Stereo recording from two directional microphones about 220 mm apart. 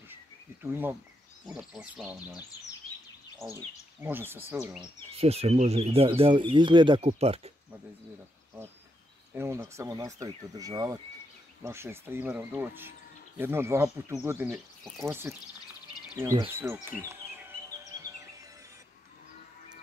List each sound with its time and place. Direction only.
0.6 s speech: 10° right (ahead or behind)
3.5 s speech: 10° right (ahead or behind)
5.1 s speech: 25° right (ahead or behind)
9.3 s speech: 10° right (ahead or behind)